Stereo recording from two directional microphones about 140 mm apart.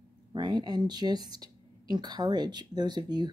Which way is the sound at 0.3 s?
30° right (ahead or behind).